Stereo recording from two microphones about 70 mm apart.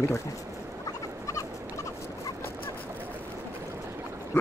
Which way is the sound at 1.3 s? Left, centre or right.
Left.